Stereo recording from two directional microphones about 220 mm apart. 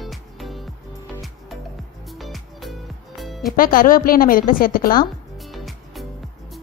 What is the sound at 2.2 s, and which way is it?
Music, centre (ahead or behind).